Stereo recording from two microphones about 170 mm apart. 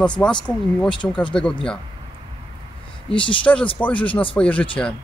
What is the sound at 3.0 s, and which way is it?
Speech, 30° left (ahead or behind).